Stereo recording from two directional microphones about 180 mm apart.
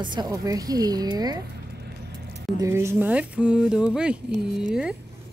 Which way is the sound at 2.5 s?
15° right (ahead or behind).